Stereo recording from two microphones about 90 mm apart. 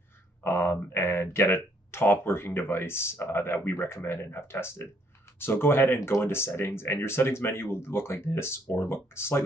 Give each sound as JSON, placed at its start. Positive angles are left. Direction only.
{"t": 0.4, "sound": "speech", "side_deg": 25}